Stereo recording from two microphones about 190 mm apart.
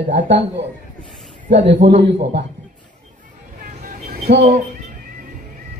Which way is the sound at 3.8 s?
50° right (ahead or behind).